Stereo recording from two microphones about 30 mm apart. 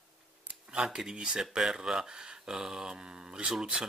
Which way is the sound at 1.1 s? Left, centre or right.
Right.